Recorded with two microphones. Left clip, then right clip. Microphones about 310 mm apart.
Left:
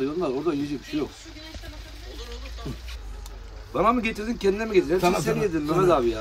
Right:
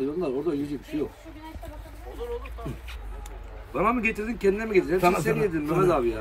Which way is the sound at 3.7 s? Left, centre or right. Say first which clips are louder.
Left 2 dB; left.